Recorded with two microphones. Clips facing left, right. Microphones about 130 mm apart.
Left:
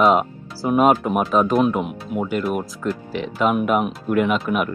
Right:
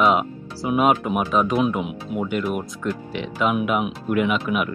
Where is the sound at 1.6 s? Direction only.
Centre (ahead or behind).